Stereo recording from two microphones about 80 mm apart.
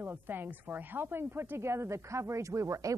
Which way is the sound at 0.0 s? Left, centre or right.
Right.